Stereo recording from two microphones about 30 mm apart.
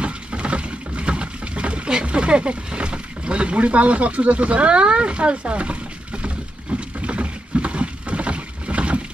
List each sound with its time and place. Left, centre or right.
0.0 s boat: right